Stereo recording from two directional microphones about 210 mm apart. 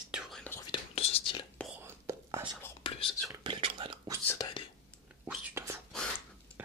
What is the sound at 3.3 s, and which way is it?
Whispering, 20° right (ahead or behind).